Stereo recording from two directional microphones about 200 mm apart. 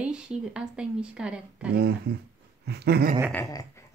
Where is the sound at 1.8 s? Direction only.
50° right (ahead or behind).